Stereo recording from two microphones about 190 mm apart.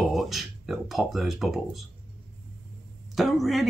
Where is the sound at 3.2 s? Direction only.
Centre (ahead or behind).